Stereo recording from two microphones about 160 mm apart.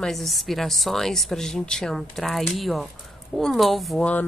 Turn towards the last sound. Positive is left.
turn(degrees=5)  # may be behind; listen again after turning